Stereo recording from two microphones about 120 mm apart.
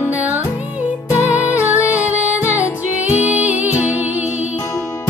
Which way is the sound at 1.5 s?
15° right (ahead or behind).